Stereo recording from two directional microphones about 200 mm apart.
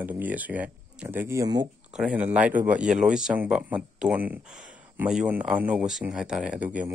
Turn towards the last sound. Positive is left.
turn(degrees=-5)  # may be behind; listen again after turning